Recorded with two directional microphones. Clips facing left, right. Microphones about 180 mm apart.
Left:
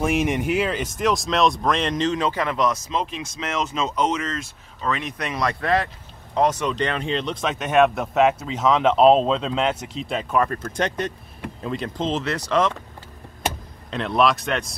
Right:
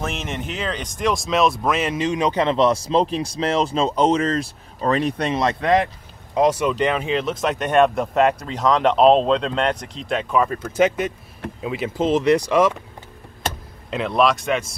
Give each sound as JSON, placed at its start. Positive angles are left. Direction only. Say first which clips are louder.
{"t": 0.0, "sound": "speech", "louder": "left 6 dB", "side_deg": 10}
{"t": 13.8, "sound": "speech", "louder": "right 2 dB", "side_deg": -5}